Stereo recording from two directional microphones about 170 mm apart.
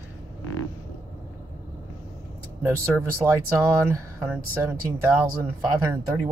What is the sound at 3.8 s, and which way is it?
Speech, 10° right (ahead or behind).